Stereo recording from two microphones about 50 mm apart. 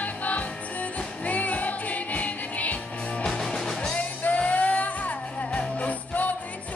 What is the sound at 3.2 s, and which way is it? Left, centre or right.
Music, centre.